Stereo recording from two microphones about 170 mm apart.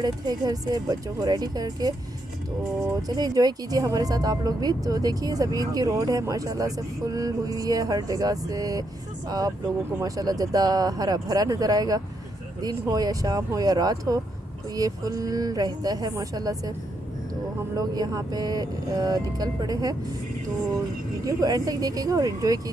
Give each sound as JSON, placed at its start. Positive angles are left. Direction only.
{"t": 0.0, "sound": "speech", "side_deg": -25}
{"t": 3.1, "sound": "speech", "side_deg": -20}
{"t": 10.0, "sound": "speech", "side_deg": -20}
{"t": 17.7, "sound": "speech", "side_deg": -20}
{"t": 21.3, "sound": "speech", "side_deg": -20}